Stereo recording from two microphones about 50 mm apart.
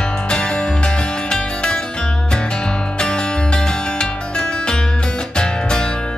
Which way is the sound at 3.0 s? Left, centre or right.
Centre.